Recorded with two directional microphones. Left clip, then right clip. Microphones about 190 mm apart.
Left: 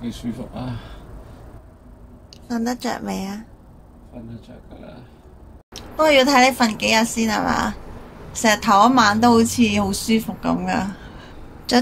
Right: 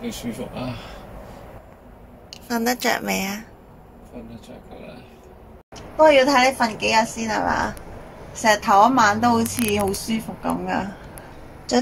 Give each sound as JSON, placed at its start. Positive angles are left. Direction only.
{"t": 2.3, "sound": "a woman's voice", "side_deg": 5}
{"t": 5.9, "sound": "a woman's voice", "side_deg": 15}